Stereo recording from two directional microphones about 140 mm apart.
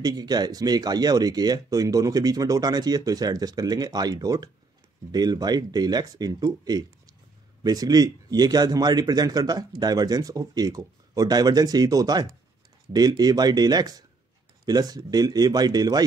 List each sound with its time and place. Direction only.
0.0 s speech: 30° right (ahead or behind)